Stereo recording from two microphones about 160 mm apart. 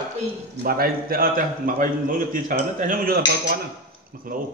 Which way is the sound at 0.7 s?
70° right (ahead or behind).